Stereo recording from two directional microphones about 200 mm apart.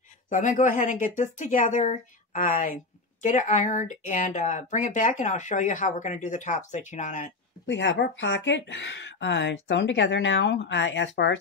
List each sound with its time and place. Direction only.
0.3 s speech: 40° left (ahead or behind)
7.6 s speech: 65° left (ahead or behind)